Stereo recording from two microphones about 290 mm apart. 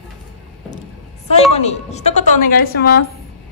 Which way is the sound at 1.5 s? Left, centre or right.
Left.